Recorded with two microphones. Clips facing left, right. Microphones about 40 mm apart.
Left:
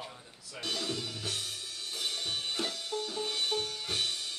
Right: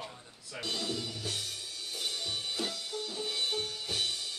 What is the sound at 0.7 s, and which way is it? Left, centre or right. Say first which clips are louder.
Music: even; left.